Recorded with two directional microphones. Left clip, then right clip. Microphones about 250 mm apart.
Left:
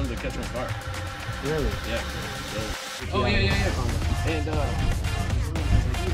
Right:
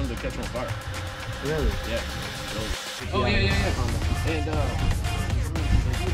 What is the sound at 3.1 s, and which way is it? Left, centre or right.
Speech, centre.